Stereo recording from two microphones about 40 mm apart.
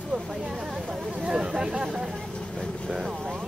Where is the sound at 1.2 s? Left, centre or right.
Centre.